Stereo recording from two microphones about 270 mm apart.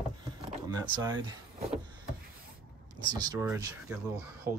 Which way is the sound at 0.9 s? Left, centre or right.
Centre.